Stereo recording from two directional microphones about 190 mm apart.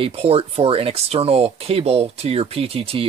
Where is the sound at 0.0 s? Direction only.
30° right (ahead or behind).